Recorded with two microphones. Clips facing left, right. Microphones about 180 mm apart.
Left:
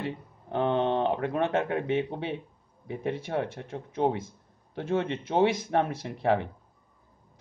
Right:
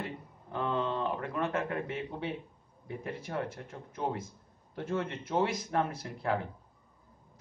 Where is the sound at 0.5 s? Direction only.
70° left (ahead or behind).